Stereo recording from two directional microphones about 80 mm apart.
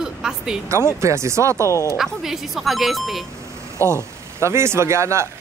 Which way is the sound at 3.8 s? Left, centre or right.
Right.